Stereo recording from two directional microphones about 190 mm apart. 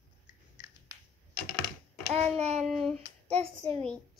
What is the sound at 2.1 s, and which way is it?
Speech, 35° right (ahead or behind).